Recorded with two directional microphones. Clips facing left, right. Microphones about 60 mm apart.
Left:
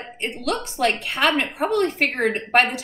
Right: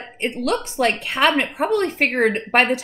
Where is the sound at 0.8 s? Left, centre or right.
Right.